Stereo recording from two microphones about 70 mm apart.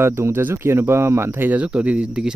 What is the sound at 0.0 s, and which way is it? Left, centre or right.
Speech, right.